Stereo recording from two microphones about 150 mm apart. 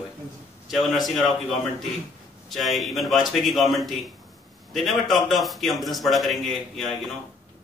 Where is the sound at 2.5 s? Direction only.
Centre (ahead or behind).